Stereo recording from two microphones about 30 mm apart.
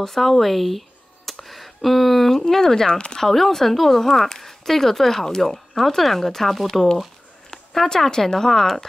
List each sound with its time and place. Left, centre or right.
0.0 s speech: centre
0.4 s a sound: centre
2.3 s speech: centre
2.9 s speech: left
3.2 s speech: centre